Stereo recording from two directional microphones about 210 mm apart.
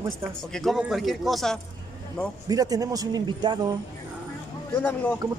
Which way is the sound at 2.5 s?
15° right (ahead or behind).